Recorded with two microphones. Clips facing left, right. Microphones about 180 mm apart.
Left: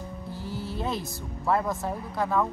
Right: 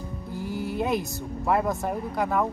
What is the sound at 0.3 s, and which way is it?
Speech, 15° right (ahead or behind).